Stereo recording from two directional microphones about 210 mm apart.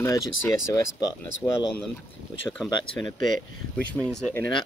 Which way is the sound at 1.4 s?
5° left (ahead or behind).